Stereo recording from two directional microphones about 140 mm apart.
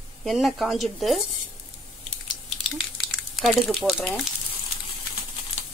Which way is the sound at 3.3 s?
Centre (ahead or behind).